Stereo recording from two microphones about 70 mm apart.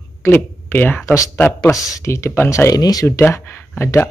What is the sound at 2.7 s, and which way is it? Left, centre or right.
Speech, left.